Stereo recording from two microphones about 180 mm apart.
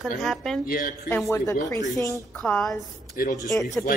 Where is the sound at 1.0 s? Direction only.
5° left (ahead or behind).